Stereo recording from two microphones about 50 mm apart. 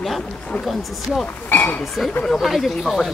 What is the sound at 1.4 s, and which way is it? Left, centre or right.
Speech, left.